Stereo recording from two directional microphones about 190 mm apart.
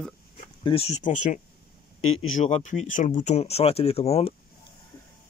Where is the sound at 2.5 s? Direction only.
35° left (ahead or behind).